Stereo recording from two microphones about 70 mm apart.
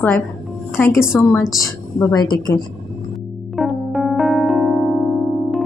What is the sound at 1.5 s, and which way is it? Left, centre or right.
A woman's voice, left.